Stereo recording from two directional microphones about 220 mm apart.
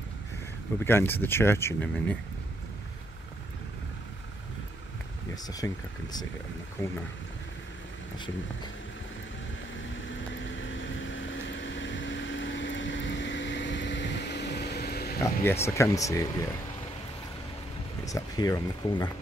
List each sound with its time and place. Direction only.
0.7 s speech: 10° left (ahead or behind)
5.3 s speech: 15° left (ahead or behind)
6.8 s speech: 15° left (ahead or behind)
10.6 s vehicle: 60° left (ahead or behind)
15.2 s speech: 10° left (ahead or behind)
18.0 s speech: 15° left (ahead or behind)